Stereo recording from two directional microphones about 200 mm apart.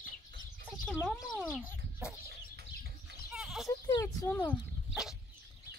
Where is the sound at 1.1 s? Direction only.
Centre (ahead or behind).